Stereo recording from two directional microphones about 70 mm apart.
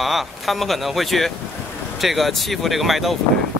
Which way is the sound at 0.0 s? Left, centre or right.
Centre.